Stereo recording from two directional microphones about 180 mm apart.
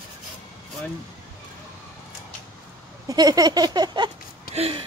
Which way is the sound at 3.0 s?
20° right (ahead or behind).